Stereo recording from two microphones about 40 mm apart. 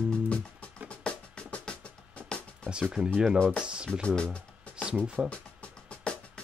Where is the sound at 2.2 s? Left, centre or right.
Left.